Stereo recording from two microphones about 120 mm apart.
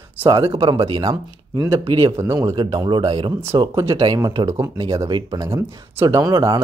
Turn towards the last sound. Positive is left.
turn(degrees=-35)  # may be behind; listen again after turning